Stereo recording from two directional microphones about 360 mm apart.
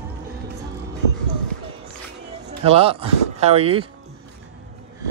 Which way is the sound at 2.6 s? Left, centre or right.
Centre.